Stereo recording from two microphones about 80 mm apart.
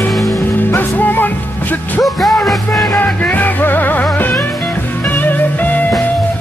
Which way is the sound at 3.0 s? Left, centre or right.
Left.